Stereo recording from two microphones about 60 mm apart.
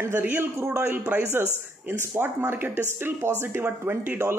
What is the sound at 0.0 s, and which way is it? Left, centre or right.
Speech, right.